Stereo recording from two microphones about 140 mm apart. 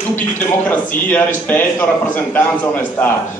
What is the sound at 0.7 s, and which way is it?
A man's voice, 10° left (ahead or behind).